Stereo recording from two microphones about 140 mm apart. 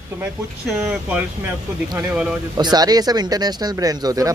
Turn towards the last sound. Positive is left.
turn(degrees=-25)  # may be behind; listen again after turning